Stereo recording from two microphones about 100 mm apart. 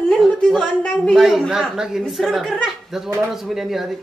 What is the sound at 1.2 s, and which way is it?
A woman's voice, centre (ahead or behind).